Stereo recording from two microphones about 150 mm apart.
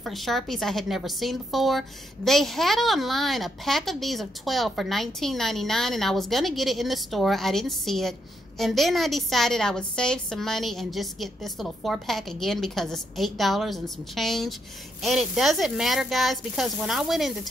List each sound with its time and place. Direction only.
0.0 s a woman's voice: centre (ahead or behind)